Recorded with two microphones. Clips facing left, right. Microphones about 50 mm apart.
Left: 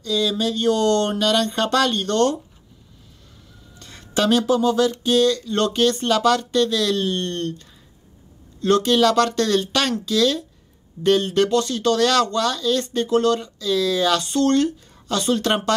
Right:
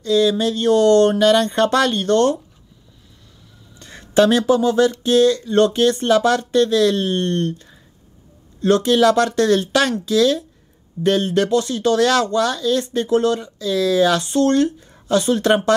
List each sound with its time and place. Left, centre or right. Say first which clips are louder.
0.3 s speech: right 4 dB; centre
1.1 s speech: right 5 dB; right
3.8 s a sound: right 7 dB; right
4.6 s a sound: right 3 dB; centre
5.1 s speech: right 5 dB; right
8.8 s speech: right 3 dB; right